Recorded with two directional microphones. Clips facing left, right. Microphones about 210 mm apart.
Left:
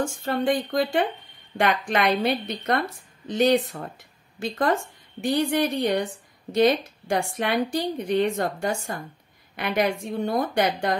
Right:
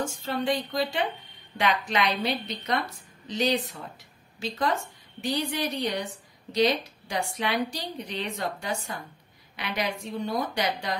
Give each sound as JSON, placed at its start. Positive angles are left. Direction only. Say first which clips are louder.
{"t": 0.0, "sound": "a woman's voice", "louder": "left 4 dB", "side_deg": 50}